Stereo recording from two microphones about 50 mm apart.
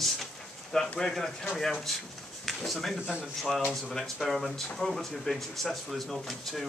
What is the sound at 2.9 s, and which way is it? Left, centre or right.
Speech, centre.